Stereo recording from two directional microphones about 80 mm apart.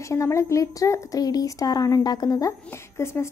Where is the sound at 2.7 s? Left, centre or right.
Left.